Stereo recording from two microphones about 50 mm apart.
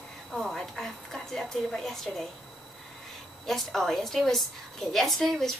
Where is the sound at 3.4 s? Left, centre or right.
Centre.